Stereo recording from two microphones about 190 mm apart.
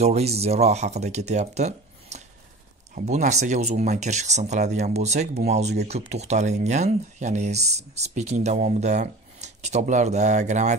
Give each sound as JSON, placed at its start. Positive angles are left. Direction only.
{"t": 0.0, "sound": "speech", "side_deg": -35}